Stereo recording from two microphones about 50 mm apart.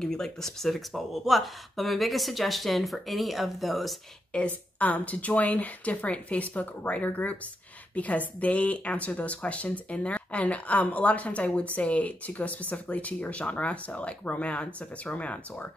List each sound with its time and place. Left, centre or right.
0.0 s speech: centre
4.5 s speech: left